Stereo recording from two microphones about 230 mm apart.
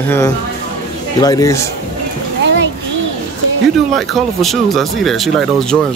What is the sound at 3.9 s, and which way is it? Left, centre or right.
Speech, centre.